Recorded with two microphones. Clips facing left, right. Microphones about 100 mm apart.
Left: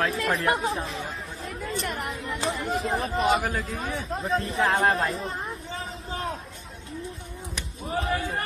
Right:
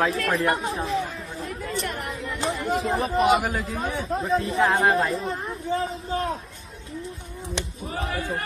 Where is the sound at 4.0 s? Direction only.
Centre (ahead or behind).